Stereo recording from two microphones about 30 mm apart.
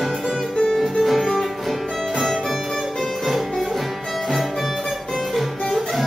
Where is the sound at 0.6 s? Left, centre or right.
Centre.